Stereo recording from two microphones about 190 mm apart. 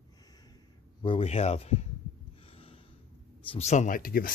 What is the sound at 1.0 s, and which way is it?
Speech, 30° left (ahead or behind).